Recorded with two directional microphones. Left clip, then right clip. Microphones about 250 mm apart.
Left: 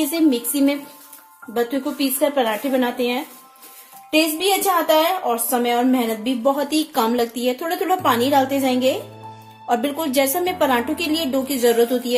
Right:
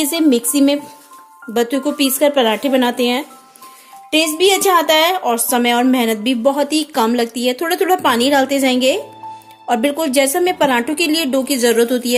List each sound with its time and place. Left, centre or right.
0.0 s a woman's voice: right